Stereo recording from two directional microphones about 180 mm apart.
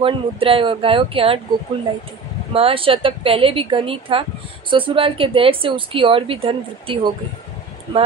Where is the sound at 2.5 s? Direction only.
30° right (ahead or behind).